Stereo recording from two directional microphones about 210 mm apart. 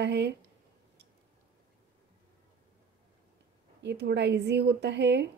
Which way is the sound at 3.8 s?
55° right (ahead or behind).